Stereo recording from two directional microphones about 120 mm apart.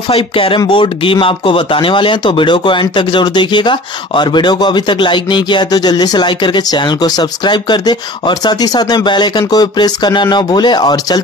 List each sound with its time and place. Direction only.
0.1 s speech: 50° left (ahead or behind)